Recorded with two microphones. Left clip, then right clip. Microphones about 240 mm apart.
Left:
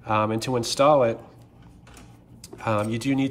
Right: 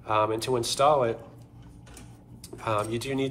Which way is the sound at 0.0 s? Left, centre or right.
Left.